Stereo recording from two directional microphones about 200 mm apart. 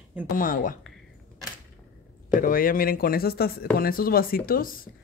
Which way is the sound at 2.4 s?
45° left (ahead or behind).